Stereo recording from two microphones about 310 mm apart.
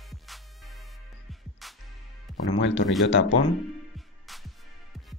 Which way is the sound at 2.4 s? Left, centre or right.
Left.